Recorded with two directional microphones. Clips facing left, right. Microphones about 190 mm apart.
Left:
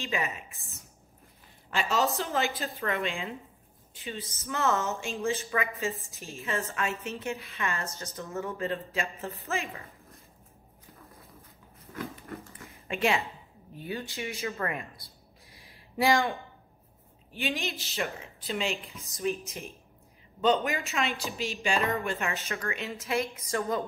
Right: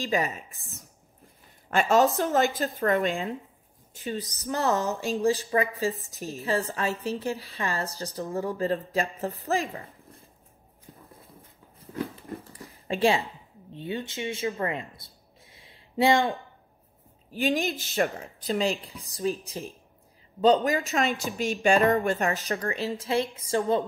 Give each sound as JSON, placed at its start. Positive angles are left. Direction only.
{"t": 0.0, "sound": "speech", "side_deg": -35}
{"t": 1.7, "sound": "a woman's voice", "side_deg": -50}
{"t": 11.9, "sound": "a sound", "side_deg": -35}
{"t": 13.7, "sound": "speech", "side_deg": -25}
{"t": 15.5, "sound": "a sound", "side_deg": -25}
{"t": 17.3, "sound": "speech", "side_deg": -40}
{"t": 21.4, "sound": "a woman's voice", "side_deg": -50}